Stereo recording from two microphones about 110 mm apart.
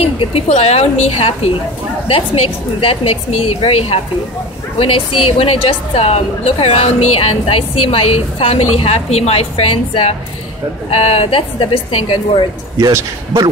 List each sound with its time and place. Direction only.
0.0 s a woman's voice: 60° left (ahead or behind)
4.7 s a woman's voice: 60° left (ahead or behind)
12.7 s a man's voice: 30° right (ahead or behind)